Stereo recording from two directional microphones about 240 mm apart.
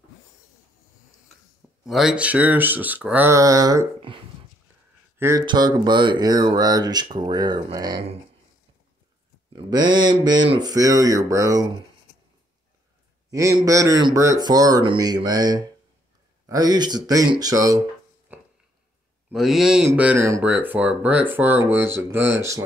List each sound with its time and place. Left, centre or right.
1.9 s speech: centre
5.2 s speech: centre
9.7 s speech: centre
13.3 s speech: centre
18.3 s a sound: centre
19.3 s speech: centre